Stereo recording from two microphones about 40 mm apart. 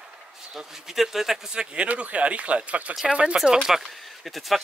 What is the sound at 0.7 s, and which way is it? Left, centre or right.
Speech, centre.